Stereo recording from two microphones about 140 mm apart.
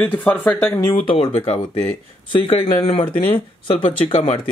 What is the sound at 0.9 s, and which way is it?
Speech, 40° left (ahead or behind).